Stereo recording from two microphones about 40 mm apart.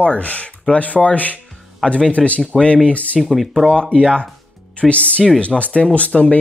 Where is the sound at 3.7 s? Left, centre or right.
Left.